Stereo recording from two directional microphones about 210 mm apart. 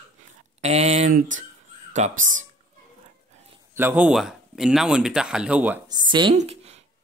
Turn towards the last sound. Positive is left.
turn(degrees=-30)  # may be behind; listen again after turning